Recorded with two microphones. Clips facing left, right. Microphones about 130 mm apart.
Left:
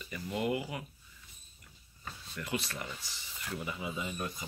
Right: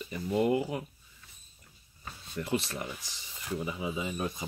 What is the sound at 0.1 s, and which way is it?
Speech, 30° right (ahead or behind).